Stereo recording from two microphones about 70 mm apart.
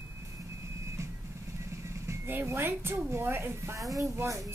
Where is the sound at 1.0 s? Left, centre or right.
Right.